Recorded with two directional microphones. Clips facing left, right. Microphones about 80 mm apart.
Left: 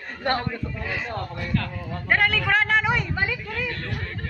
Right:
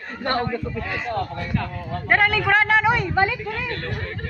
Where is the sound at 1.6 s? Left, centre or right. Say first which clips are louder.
Right 3 dB; centre.